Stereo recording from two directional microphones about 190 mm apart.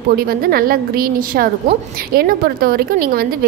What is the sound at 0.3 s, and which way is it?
Speech, 50° right (ahead or behind).